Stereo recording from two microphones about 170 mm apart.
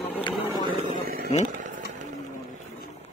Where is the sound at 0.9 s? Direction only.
60° right (ahead or behind).